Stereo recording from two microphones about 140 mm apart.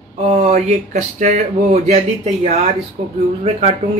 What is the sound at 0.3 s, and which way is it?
Speech, 55° right (ahead or behind).